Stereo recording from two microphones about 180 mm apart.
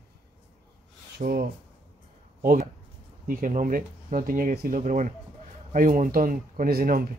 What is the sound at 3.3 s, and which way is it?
Speech, 45° right (ahead or behind).